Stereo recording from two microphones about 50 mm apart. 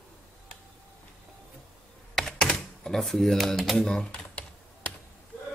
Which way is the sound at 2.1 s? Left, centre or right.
Centre.